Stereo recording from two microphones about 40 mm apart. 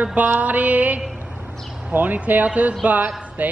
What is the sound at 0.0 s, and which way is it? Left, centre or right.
Music, right.